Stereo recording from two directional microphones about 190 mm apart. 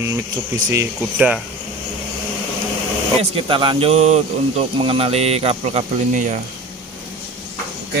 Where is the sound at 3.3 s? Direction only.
25° right (ahead or behind).